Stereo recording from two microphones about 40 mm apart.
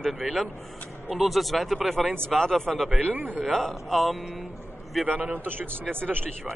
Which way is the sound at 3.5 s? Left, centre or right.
Centre.